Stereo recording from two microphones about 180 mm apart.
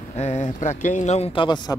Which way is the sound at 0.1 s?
40° left (ahead or behind).